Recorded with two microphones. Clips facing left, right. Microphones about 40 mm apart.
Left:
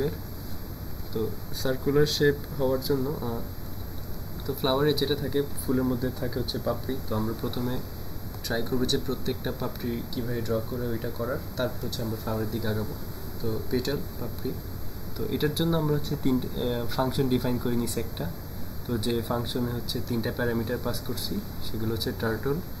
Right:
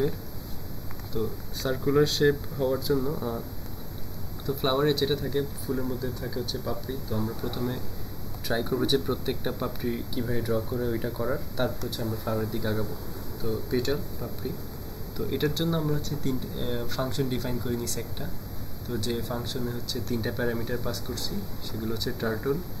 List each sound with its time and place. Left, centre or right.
1.1 s speech: centre
4.5 s speech: centre